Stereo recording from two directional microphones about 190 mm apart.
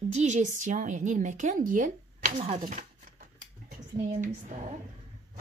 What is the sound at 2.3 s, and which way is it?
Speech, 30° right (ahead or behind).